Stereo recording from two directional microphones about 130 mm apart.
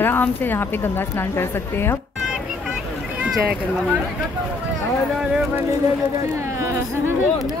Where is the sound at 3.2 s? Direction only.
10° right (ahead or behind).